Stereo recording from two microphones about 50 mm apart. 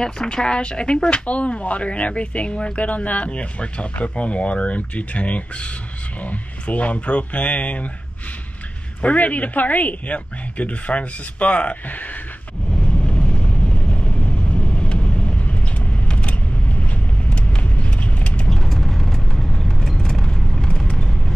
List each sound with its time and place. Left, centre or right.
0.0 s speech: centre
9.0 s speech: left
12.8 s vehicle: centre
18.5 s vehicle: centre